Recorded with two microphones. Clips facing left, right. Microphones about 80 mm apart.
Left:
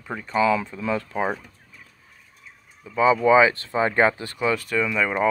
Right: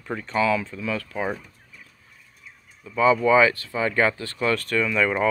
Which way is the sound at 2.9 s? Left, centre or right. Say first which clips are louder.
Left 1 dB; centre.